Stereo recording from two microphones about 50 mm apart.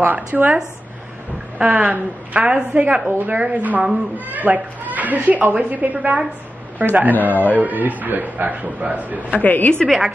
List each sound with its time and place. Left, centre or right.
0.0 s a man's voice: right
1.6 s a man's voice: right
9.3 s a woman's voice: left